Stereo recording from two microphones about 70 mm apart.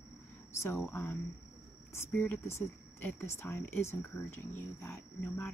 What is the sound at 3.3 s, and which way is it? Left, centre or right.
Speech, left.